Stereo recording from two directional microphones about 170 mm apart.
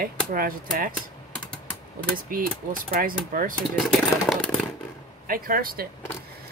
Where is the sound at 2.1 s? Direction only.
55° right (ahead or behind).